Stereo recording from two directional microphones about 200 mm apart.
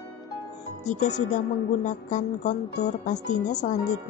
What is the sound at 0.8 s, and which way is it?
Speech, 35° left (ahead or behind).